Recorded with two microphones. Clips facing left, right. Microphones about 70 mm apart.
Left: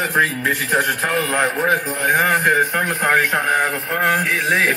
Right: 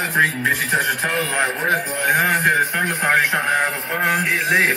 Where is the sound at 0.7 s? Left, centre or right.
Left.